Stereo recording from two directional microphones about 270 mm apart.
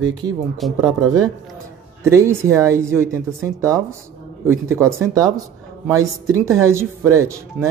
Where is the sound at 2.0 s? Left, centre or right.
Centre.